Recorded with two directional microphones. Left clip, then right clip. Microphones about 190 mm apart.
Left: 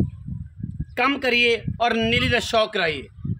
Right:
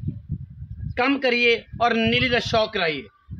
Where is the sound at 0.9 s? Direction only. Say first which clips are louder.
Left 1 dB; 65° left (ahead or behind).